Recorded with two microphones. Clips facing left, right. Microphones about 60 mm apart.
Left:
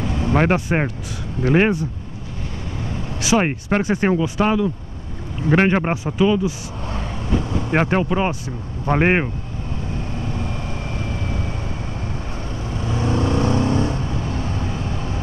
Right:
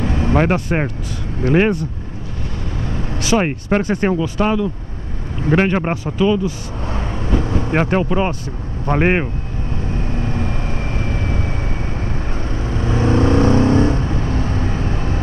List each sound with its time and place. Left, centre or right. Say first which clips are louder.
0.0 s vehicle: right 3 dB; right
0.3 s speech: even; centre
3.2 s speech: right 1 dB; centre
6.9 s vehicle: right 2 dB; right
7.7 s speech: right 1 dB; centre
10.2 s vehicle: right 4 dB; right
12.4 s vehicle: right 5 dB; right